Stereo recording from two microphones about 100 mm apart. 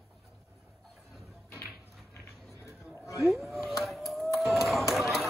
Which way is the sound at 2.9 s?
30° left (ahead or behind).